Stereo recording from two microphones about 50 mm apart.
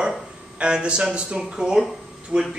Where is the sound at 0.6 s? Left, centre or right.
Right.